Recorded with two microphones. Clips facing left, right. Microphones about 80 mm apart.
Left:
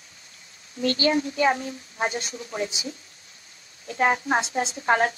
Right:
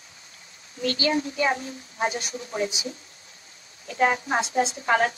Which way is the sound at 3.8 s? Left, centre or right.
Left.